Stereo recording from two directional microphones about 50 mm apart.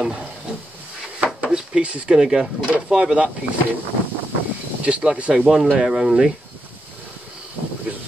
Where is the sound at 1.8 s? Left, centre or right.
Centre.